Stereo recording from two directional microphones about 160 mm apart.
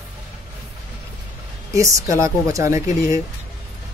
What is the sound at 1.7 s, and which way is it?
A woman's voice, 20° right (ahead or behind).